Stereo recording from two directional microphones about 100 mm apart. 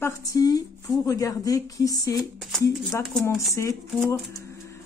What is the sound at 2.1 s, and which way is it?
Speech, centre (ahead or behind).